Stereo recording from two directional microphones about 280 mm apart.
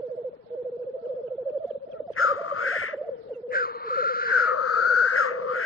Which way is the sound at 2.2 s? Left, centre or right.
Left.